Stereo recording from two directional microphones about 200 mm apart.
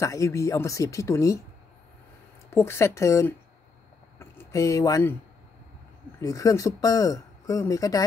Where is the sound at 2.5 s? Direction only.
10° left (ahead or behind).